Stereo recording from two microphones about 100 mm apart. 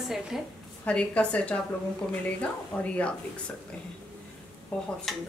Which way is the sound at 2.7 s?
10° left (ahead or behind).